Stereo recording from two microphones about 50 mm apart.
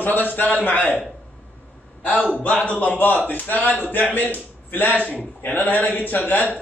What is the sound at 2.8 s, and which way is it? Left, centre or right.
A man's voice, left.